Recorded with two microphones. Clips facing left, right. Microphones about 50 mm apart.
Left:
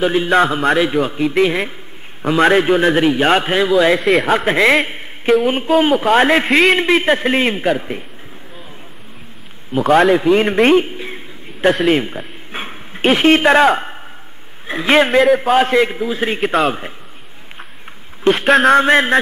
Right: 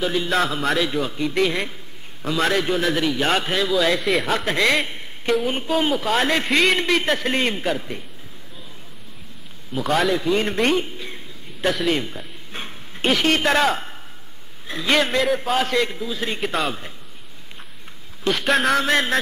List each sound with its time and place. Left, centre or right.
0.0 s a man's voice: left
2.2 s a man's voice: left
4.0 s a man's voice: centre
4.5 s a man's voice: left
4.8 s a sound: left
5.8 s a man's voice: left
9.7 s a man's voice: left
14.7 s a man's voice: left
18.2 s a man's voice: left
18.5 s a man's voice: centre
18.8 s a man's voice: left